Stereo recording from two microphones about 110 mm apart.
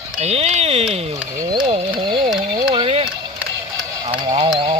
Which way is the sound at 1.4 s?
40° right (ahead or behind).